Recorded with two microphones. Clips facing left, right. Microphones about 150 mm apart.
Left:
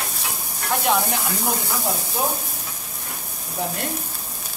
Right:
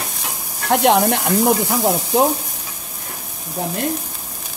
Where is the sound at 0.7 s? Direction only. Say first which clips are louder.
Right 7 dB; 70° right (ahead or behind).